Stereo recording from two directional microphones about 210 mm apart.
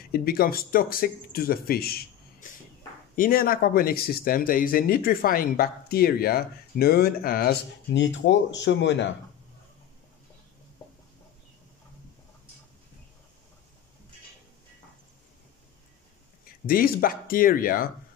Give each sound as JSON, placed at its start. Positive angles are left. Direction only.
{"t": 0.1, "sound": "speech", "side_deg": 45}
{"t": 2.4, "sound": "a sound", "side_deg": 40}
{"t": 3.2, "sound": "speech", "side_deg": 45}
{"t": 16.6, "sound": "speech", "side_deg": 45}